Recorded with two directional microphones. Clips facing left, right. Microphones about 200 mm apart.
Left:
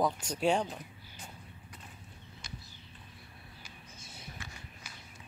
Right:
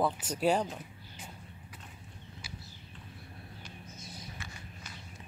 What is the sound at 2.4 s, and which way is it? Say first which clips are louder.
Horse: left 1 dB; 5° right (ahead or behind).